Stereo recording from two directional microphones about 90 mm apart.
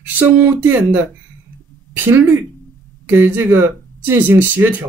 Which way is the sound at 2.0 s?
20° right (ahead or behind).